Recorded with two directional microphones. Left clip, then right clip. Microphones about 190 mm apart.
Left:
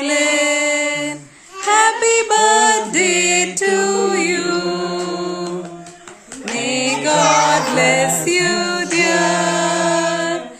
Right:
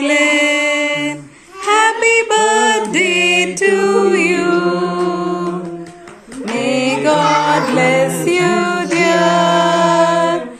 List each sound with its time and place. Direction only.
0.0 s music: 30° left (ahead or behind); by 5.5 s 5° left (ahead or behind)
6.6 s music: 5° left (ahead or behind)